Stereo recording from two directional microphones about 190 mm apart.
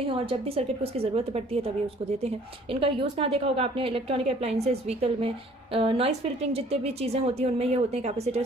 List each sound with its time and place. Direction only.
0.0 s a woman's voice: 30° right (ahead or behind)
2.7 s a woman's voice: 30° right (ahead or behind)